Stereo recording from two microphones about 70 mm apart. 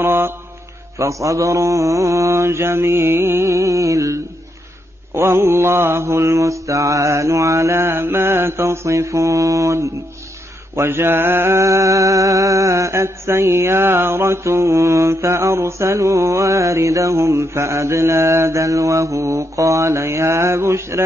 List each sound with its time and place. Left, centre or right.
0.0 s mantra: right
0.9 s mantra: right
5.1 s mantra: right
10.8 s mantra: right